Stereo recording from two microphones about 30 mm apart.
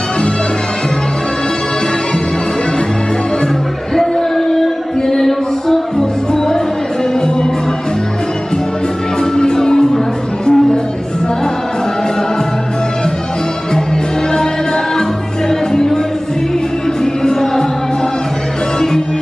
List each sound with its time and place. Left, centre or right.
3.9 s music: centre; by 7.4 s left
9.2 s music: left
15.7 s a sound: centre
17.0 s music: left